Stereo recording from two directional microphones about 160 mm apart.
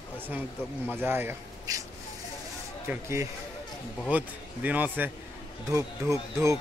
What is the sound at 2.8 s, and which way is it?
Speech, 15° right (ahead or behind).